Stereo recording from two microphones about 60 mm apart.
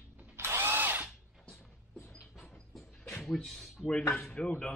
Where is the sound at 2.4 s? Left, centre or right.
Centre.